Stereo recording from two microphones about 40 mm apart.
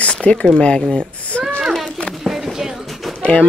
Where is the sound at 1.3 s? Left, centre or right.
Left.